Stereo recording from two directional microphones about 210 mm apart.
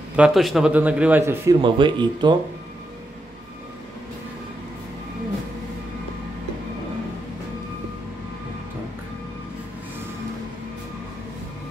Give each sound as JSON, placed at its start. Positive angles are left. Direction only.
{"t": 0.1, "sound": "a man's voice", "side_deg": -5}